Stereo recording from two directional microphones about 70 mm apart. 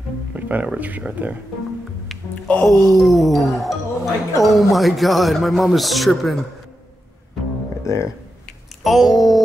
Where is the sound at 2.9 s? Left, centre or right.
Centre.